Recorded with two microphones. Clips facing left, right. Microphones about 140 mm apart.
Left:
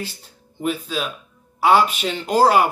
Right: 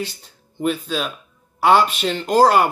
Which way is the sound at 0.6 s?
5° left (ahead or behind).